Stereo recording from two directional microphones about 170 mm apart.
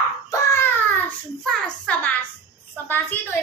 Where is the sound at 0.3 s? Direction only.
15° left (ahead or behind).